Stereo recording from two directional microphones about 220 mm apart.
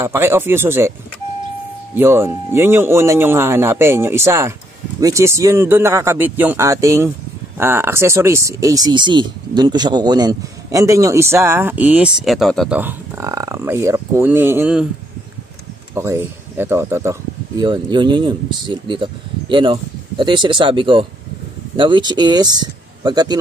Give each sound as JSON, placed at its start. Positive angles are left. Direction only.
{"t": 0.0, "sound": "speech", "side_deg": -10}
{"t": 2.0, "sound": "speech", "side_deg": -10}
{"t": 15.9, "sound": "speech", "side_deg": -10}